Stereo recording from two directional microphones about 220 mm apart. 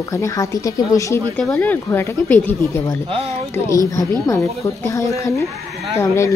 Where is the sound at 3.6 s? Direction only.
15° left (ahead or behind).